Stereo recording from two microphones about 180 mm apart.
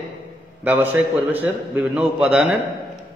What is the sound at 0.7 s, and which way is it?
A man's voice, 10° right (ahead or behind).